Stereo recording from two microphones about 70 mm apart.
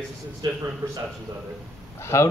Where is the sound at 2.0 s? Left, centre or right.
Left.